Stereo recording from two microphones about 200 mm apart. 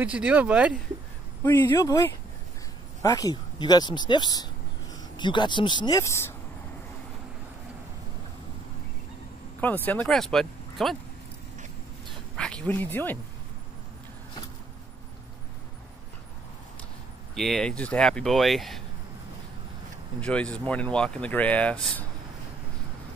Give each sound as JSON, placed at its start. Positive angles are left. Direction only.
{"t": 0.0, "sound": "speech", "side_deg": -5}
{"t": 1.6, "sound": "speech", "side_deg": 20}
{"t": 3.0, "sound": "speech", "side_deg": 20}
{"t": 9.8, "sound": "speech", "side_deg": 5}
{"t": 12.4, "sound": "speech", "side_deg": 5}
{"t": 17.4, "sound": "speech", "side_deg": 0}
{"t": 20.2, "sound": "speech", "side_deg": 5}